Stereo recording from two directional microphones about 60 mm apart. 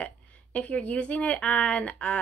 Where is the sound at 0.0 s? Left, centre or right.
Left.